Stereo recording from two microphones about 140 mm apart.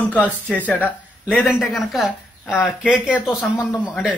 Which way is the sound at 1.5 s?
Centre (ahead or behind).